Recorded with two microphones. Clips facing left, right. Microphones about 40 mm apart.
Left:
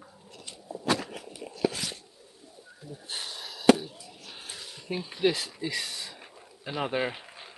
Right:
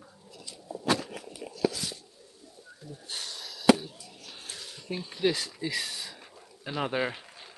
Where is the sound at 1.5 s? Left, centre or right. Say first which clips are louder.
Even; left.